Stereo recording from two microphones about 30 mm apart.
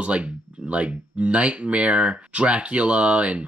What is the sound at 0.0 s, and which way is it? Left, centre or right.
Speech, right.